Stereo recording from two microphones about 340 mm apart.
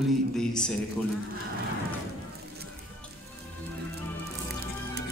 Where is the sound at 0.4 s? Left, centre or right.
Centre.